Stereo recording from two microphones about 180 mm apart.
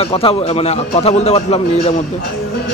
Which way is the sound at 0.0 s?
30° left (ahead or behind).